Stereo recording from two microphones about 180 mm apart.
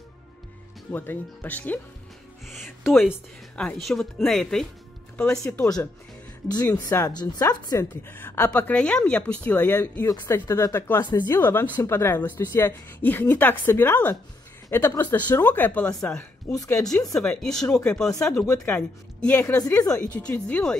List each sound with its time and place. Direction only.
0.9 s a woman's voice: 10° left (ahead or behind)
3.1 s speech: 5° left (ahead or behind)
5.5 s a woman's voice: 20° left (ahead or behind); by 16.3 s 5° left (ahead or behind)
16.4 s speech: 20° left (ahead or behind)
17.1 s speech: 5° left (ahead or behind)
18.4 s speech: 20° left (ahead or behind)
18.8 s a woman's voice: 5° left (ahead or behind)
19.4 s a woman's voice: 20° left (ahead or behind)